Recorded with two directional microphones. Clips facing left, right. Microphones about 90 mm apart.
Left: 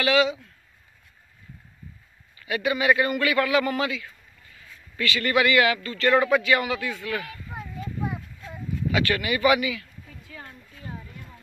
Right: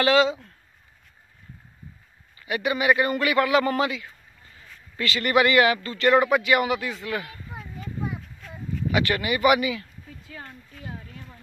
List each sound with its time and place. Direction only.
0.0 s speech: 35° right (ahead or behind)
2.3 s a man's voice: 25° right (ahead or behind)
8.9 s speech: 25° right (ahead or behind)